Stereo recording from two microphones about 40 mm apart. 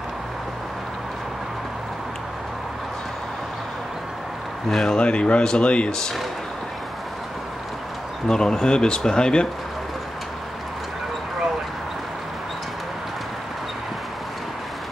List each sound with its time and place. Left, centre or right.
4.6 s speech: centre
4.9 s speech: left
8.3 s speech: centre